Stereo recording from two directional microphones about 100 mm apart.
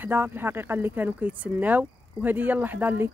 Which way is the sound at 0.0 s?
20° right (ahead or behind).